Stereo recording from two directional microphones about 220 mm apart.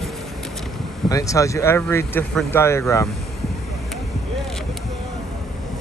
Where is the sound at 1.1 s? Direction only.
15° left (ahead or behind).